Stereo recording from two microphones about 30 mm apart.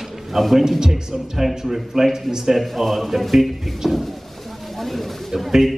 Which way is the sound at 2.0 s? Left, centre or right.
Centre.